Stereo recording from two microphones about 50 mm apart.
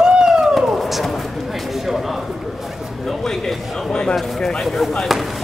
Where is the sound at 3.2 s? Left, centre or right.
Centre.